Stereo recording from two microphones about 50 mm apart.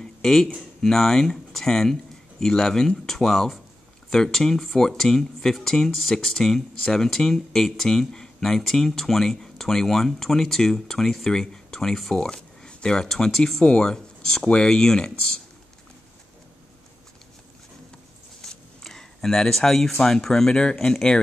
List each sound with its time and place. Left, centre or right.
0.0 s a sound: centre
0.8 s speech: centre
12.3 s speech: centre
18.4 s speech: centre